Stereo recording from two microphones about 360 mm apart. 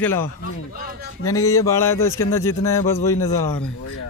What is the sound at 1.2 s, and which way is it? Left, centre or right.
Speech, centre.